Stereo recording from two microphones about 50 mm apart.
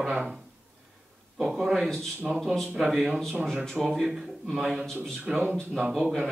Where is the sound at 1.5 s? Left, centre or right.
Centre.